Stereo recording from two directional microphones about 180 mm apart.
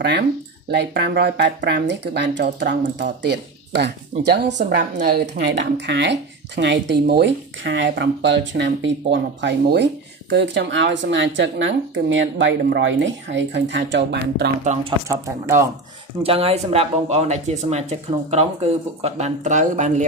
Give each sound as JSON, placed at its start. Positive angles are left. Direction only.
{"t": 0.7, "sound": "speech", "side_deg": -65}
{"t": 15.0, "sound": "speech", "side_deg": -15}
{"t": 16.2, "sound": "speech", "side_deg": -30}